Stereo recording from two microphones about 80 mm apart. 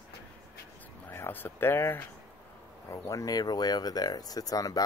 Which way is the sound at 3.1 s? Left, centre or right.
Left.